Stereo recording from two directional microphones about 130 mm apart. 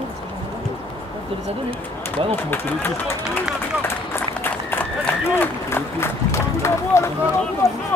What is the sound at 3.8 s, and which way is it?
Run, 20° left (ahead or behind).